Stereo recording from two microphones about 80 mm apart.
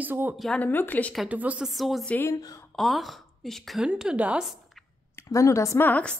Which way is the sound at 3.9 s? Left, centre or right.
Centre.